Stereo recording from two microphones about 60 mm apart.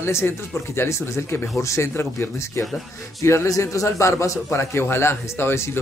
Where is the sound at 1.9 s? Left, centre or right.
Left.